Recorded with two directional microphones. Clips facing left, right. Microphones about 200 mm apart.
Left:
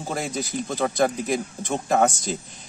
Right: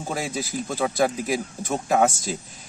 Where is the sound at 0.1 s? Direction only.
5° right (ahead or behind).